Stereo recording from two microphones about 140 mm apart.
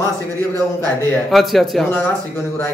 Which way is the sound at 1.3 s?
Centre (ahead or behind).